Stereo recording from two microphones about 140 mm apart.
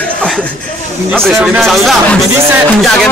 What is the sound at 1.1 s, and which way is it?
A man's voice, centre (ahead or behind).